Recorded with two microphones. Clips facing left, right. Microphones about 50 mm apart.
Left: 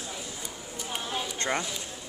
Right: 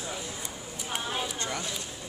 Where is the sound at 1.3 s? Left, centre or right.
Left.